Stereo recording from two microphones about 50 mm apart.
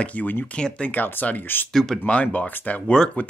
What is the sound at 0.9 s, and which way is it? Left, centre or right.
Speech, left.